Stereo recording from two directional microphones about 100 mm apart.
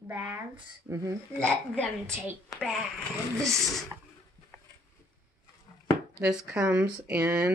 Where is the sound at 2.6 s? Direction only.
Centre (ahead or behind).